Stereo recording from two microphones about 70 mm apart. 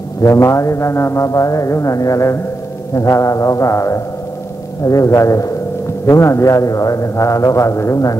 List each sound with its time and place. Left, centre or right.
0.2 s mantra: left